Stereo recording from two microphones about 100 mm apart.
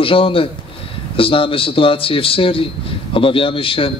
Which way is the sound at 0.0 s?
65° left (ahead or behind).